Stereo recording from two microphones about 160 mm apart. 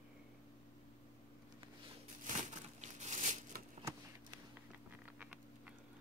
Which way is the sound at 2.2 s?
50° right (ahead or behind).